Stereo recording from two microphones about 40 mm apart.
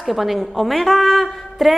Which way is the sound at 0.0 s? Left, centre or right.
Centre.